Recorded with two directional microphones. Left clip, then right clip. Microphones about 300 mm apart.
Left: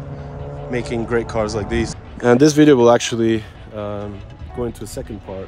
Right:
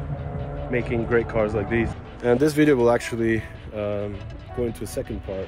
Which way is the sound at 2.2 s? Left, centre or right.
Left.